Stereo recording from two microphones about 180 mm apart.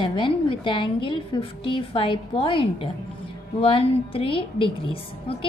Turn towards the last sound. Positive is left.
turn(degrees=30)  # may be behind; listen again after turning